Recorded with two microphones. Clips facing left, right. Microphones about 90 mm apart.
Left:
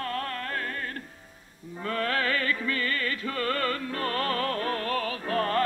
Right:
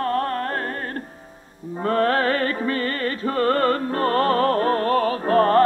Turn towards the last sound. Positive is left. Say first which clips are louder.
# right 10 dB
turn(degrees=-40)  # may be behind; listen again after turning